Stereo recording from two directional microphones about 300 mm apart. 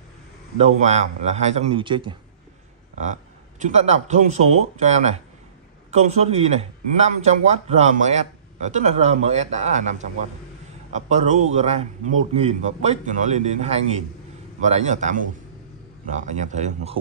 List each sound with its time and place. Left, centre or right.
0.6 s a man's voice: right